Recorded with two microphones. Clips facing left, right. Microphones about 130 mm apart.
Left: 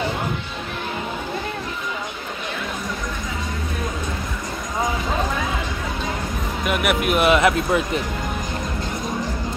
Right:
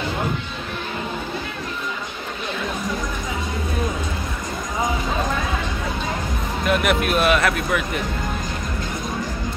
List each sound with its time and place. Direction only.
6.6 s speech: 10° left (ahead or behind)